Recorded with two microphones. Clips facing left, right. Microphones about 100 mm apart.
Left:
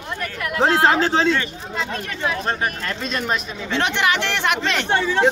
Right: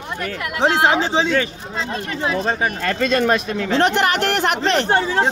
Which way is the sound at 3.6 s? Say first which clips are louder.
Right 3 dB; 40° right (ahead or behind).